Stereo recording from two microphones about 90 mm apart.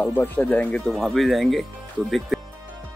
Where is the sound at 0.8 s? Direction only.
Centre (ahead or behind).